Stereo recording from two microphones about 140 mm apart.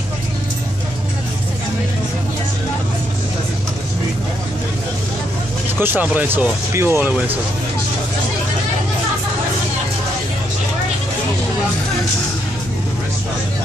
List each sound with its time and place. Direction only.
5.8 s speech: 15° right (ahead or behind)